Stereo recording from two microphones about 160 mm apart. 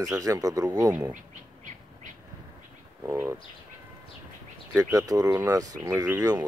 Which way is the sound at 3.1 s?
15° right (ahead or behind).